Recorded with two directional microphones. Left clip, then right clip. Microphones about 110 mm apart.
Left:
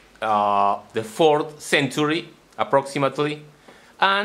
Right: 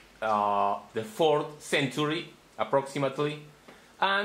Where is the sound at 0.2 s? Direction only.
45° left (ahead or behind).